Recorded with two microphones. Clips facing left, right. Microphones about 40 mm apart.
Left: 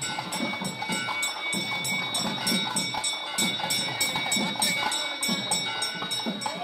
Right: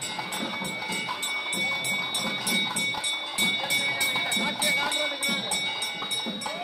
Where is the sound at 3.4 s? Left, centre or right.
Centre.